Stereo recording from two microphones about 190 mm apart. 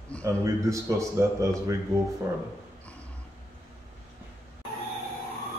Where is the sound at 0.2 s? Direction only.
15° right (ahead or behind).